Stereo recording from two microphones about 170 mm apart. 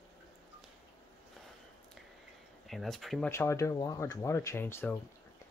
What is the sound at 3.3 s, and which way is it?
Speech, 15° left (ahead or behind).